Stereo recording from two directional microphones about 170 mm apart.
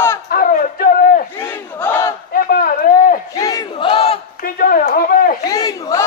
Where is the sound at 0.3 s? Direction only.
55° left (ahead or behind).